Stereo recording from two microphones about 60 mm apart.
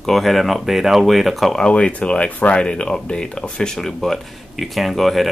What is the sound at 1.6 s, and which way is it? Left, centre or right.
Speech, centre.